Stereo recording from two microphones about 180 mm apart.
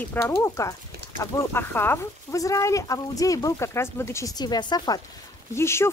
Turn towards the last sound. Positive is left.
turn(degrees=15)  # may be behind; listen again after turning